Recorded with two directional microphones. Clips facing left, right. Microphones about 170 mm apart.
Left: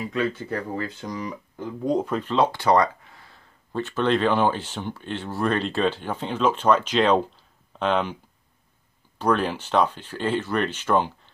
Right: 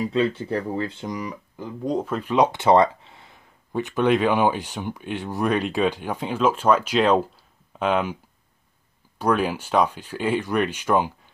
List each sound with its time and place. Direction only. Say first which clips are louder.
0.0 s speech: right 4 dB; 30° right (ahead or behind)
1.9 s speech: left 1 dB; centre (ahead or behind)
2.2 s speech: right 4 dB; 20° right (ahead or behind)
9.2 s speech: right 1 dB; 10° right (ahead or behind)